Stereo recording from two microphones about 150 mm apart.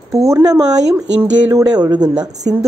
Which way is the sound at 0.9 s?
10° right (ahead or behind).